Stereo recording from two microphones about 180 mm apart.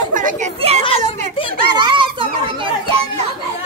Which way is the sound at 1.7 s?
25° right (ahead or behind).